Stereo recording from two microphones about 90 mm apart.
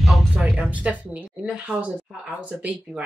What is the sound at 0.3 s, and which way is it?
A woman's voice, 10° right (ahead or behind).